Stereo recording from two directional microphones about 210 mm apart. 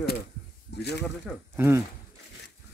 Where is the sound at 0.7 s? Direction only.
50° left (ahead or behind).